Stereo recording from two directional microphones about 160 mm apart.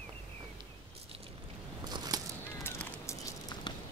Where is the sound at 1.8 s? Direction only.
25° right (ahead or behind).